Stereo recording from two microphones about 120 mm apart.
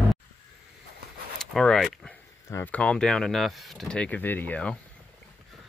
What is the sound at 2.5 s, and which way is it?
Speech, 20° left (ahead or behind).